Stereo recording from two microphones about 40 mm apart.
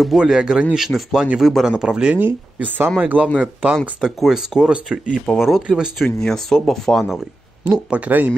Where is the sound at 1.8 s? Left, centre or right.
Right.